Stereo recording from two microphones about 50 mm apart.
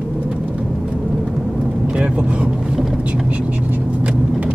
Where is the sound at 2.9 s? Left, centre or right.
Right.